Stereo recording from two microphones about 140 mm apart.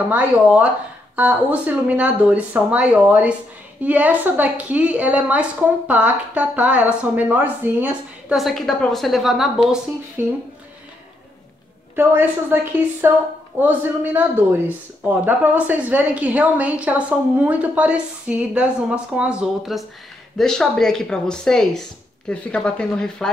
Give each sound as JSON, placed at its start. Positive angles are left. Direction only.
{"t": 0.1, "sound": "a woman's voice", "side_deg": -10}
{"t": 8.4, "sound": "speech", "side_deg": 0}
{"t": 10.2, "sound": "a woman's voice", "side_deg": -15}
{"t": 11.9, "sound": "a woman's voice", "side_deg": -15}